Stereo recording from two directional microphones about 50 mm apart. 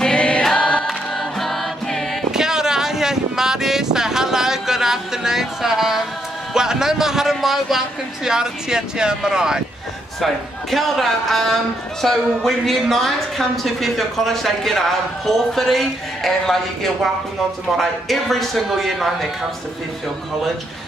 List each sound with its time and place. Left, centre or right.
0.0 s choir: centre
1.4 s choir: centre
2.3 s a sound: centre
8.3 s speech: centre
10.2 s speech: centre